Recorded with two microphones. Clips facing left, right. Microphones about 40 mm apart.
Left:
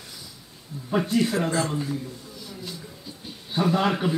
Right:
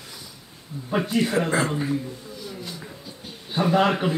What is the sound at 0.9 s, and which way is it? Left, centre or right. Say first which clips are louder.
Speech: right 1 dB; right.